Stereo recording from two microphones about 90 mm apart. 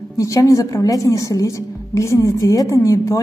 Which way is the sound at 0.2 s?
40° left (ahead or behind).